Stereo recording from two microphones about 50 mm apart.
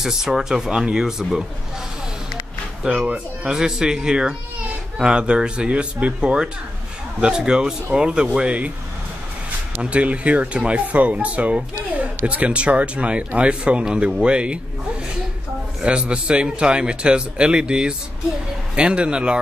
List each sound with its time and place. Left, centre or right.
0.0 s speech: centre
3.1 s a man's voice: centre
9.8 s a man's voice: right
15.8 s a man's voice: centre